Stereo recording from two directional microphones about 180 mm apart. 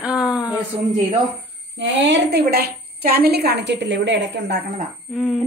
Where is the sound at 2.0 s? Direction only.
60° right (ahead or behind); by 4.2 s 80° right.